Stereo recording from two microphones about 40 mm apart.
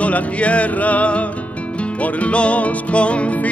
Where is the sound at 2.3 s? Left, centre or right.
Left.